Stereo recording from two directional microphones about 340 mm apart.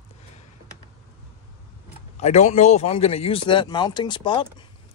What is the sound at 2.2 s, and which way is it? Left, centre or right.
Speech, centre.